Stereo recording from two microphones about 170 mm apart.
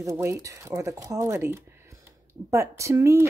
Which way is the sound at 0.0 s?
15° right (ahead or behind).